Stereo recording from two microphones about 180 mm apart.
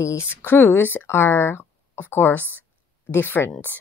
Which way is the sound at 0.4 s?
10° left (ahead or behind).